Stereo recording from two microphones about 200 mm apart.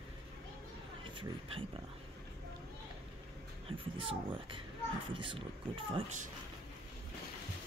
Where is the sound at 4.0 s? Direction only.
25° right (ahead or behind).